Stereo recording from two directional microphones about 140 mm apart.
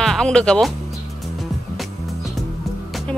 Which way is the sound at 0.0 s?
5° left (ahead or behind).